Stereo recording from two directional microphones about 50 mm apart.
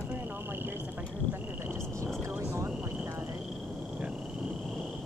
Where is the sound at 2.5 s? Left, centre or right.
Right.